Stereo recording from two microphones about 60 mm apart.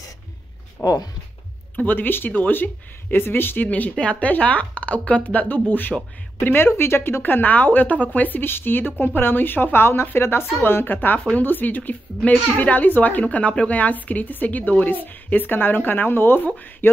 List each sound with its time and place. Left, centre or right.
0.8 s speech: left
1.8 s a woman's voice: left
16.8 s a sound: left